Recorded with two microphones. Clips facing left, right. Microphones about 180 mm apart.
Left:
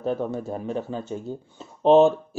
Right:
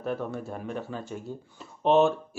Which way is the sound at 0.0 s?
30° left (ahead or behind).